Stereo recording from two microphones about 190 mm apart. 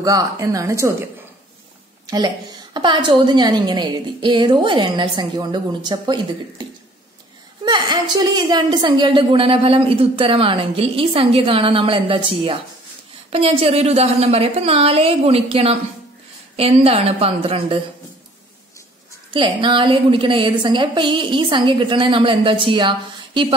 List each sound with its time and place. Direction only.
0.0 s a woman's voice: 20° right (ahead or behind)
2.0 s a woman's voice: 20° right (ahead or behind)
19.3 s a woman's voice: 25° right (ahead or behind)